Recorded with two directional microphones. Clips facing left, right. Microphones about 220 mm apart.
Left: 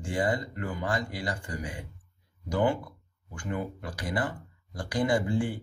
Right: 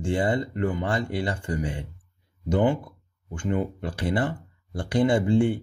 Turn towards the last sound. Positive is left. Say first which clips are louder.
# right 6 dB
turn(degrees=-25)  # may be behind; listen again after turning